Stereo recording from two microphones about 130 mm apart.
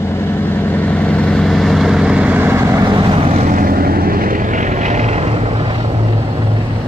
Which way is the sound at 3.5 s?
90° right.